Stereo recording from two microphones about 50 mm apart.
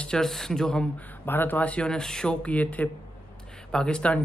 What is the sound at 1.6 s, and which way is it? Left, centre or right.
Speech, left.